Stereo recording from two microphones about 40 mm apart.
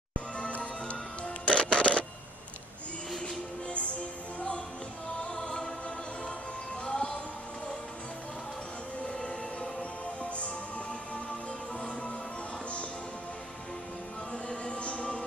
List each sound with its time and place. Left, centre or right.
0.5 s music: left
1.8 s printer: left
5.3 s music: centre
6.9 s music: centre
9.0 s train: left
14.5 s music: left